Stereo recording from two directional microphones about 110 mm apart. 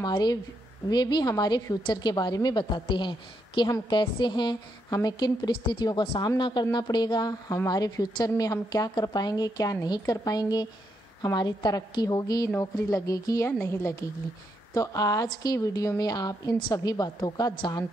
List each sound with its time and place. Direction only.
0.0 s a woman's voice: 40° left (ahead or behind)